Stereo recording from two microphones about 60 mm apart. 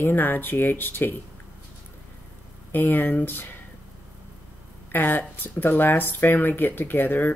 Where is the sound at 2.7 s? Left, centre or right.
Left.